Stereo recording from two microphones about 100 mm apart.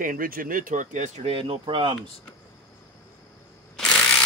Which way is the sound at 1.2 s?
70° right (ahead or behind).